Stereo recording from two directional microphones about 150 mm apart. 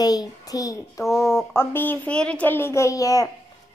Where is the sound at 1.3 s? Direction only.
15° left (ahead or behind).